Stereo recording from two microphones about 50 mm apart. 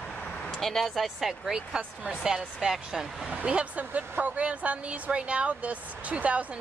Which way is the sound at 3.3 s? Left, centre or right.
Right.